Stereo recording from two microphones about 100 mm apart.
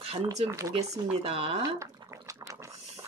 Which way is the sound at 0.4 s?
75° right (ahead or behind).